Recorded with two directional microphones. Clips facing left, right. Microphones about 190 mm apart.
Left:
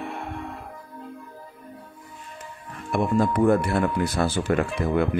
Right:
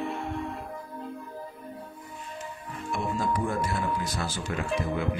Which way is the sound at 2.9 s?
60° left (ahead or behind).